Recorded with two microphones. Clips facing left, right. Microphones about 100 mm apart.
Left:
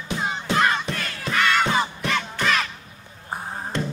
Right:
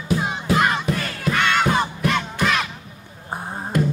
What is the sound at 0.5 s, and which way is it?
Battle cry, 10° right (ahead or behind).